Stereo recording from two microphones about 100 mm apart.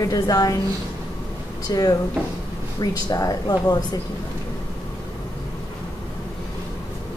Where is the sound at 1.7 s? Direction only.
40° left (ahead or behind).